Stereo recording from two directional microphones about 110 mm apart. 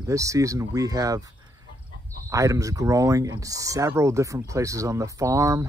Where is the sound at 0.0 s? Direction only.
30° right (ahead or behind).